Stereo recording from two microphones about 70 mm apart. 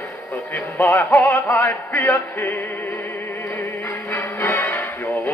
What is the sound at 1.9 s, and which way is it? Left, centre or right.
Music, left.